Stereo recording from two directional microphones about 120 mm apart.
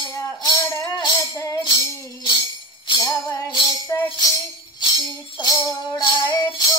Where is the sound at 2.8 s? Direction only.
30° left (ahead or behind).